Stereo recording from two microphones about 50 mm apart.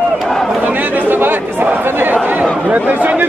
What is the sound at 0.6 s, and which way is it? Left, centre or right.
Chatter, right.